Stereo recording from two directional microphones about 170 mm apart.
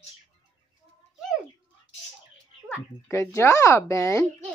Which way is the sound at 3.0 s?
15° left (ahead or behind).